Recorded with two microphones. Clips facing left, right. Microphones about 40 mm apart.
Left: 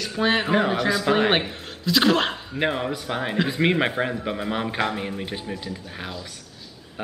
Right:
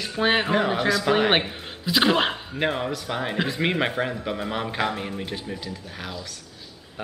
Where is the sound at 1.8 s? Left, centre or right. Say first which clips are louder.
Left 1 dB; centre.